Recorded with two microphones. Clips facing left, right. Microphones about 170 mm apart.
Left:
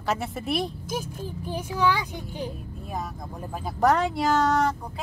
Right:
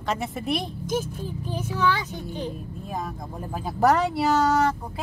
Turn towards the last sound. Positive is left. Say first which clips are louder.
# right 1 dB
turn(degrees=0)  # may be behind; listen again after turning